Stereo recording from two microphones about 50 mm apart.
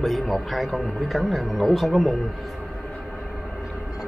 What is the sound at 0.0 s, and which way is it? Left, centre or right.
Speech, centre.